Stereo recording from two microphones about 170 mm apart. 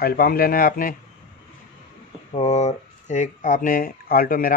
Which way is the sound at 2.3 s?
40° left (ahead or behind).